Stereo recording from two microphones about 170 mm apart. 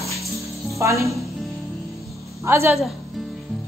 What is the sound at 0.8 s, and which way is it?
Speech, 15° right (ahead or behind).